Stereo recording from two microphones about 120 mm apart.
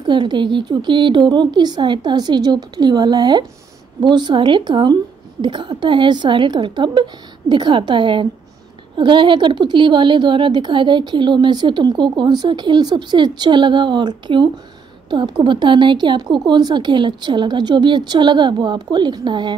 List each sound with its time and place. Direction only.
0.0 s a woman's voice: 40° right (ahead or behind)